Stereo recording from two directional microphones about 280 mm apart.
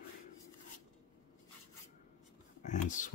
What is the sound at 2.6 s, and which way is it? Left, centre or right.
Speech, left.